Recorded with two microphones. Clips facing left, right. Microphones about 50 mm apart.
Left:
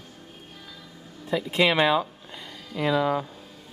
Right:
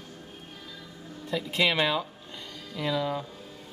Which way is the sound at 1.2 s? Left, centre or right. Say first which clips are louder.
Left 4 dB; centre.